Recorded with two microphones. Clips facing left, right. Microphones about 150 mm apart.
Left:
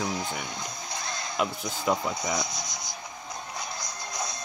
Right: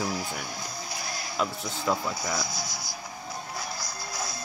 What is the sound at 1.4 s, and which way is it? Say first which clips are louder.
Speech: left 1 dB; 15° left (ahead or behind).